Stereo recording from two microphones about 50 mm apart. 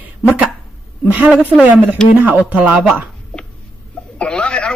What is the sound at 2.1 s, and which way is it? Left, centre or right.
Speech, right.